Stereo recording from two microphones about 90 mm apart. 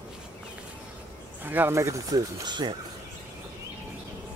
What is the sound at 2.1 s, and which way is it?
Speech, 55° right (ahead or behind).